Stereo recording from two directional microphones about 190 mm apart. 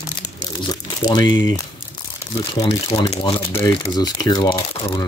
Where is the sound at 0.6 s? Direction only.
20° left (ahead or behind).